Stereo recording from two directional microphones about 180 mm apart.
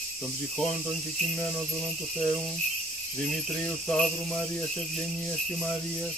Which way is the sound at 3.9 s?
5° left (ahead or behind).